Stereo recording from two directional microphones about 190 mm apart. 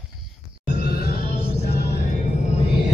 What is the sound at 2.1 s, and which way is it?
Music, 40° left (ahead or behind).